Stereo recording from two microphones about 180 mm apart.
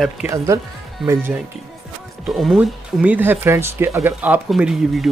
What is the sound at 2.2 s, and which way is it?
Speech, centre (ahead or behind).